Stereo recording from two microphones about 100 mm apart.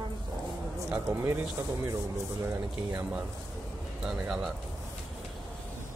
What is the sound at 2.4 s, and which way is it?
Speech, 30° right (ahead or behind).